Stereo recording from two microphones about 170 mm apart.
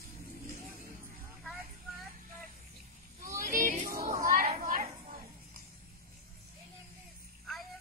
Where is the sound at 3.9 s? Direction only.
55° right (ahead or behind).